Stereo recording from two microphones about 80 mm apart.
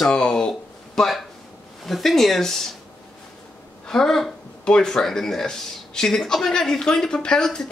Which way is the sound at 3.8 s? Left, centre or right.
Centre.